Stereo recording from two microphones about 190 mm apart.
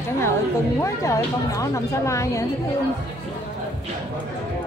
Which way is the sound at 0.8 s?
15° left (ahead or behind).